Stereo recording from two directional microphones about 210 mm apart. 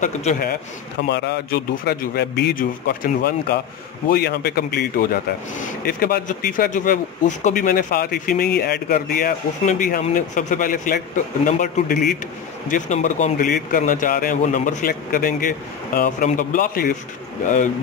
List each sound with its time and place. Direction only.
0.0 s speech: 35° left (ahead or behind)
1.0 s speech: 55° left (ahead or behind)